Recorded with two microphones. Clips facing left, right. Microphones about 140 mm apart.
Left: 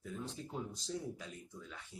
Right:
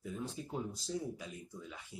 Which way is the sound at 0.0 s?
10° right (ahead or behind).